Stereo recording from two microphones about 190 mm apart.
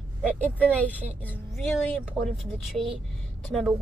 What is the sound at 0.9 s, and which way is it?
A woman's voice, 10° right (ahead or behind).